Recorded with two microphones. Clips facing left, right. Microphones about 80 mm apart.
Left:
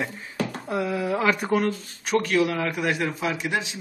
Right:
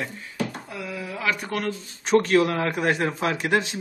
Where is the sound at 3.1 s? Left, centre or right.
Right.